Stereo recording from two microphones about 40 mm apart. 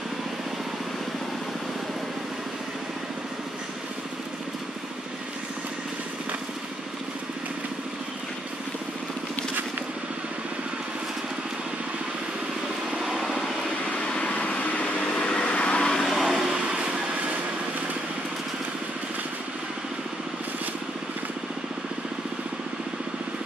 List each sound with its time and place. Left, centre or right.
12.9 s vehicle: centre
14.0 s vehicle: left
16.1 s vacuum cleaner: centre